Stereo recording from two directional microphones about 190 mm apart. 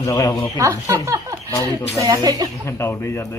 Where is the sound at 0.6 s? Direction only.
15° right (ahead or behind).